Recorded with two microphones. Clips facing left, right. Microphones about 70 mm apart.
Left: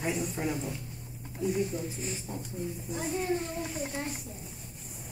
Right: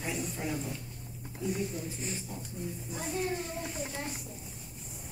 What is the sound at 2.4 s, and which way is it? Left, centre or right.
Speech, centre.